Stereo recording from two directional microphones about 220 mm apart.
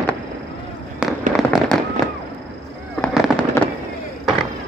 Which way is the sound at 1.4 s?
Centre (ahead or behind).